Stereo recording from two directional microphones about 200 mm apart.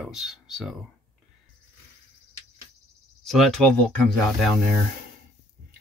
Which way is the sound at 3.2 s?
Centre (ahead or behind).